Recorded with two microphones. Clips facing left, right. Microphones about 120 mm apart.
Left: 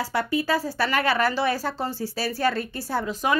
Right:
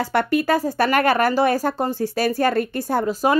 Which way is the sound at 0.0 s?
65° right (ahead or behind).